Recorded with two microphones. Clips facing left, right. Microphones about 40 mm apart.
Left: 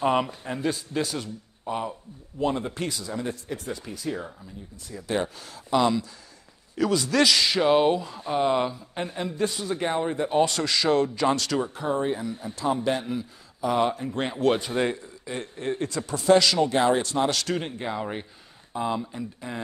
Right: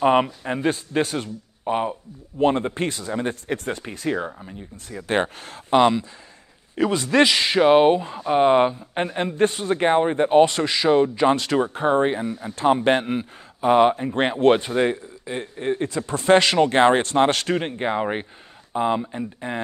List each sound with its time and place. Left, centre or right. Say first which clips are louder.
0.0 s a man's voice: right 6 dB; right
10.5 s a man's voice: right 4 dB; right
14.8 s speech: right 5 dB; right
16.2 s a man's voice: right 3 dB; right